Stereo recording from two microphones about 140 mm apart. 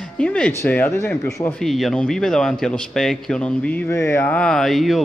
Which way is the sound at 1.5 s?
Centre (ahead or behind).